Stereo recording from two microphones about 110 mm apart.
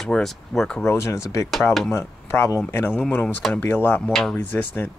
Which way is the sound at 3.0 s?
5° left (ahead or behind).